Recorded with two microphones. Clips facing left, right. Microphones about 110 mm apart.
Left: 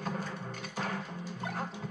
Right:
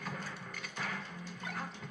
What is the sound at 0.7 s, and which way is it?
Music, 35° left (ahead or behind).